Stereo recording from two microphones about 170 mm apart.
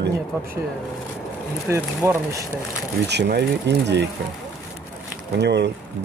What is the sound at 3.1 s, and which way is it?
Speech, 80° right.